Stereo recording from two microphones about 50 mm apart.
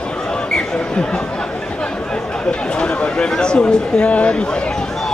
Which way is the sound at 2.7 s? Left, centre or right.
Centre.